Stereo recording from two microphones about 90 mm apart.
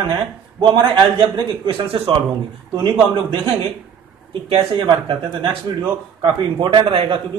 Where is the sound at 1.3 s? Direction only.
85° right.